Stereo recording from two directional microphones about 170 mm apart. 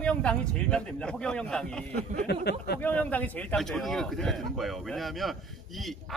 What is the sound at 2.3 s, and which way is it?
Speech, 75° left (ahead or behind).